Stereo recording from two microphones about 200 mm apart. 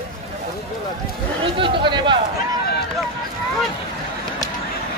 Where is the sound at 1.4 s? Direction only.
25° right (ahead or behind).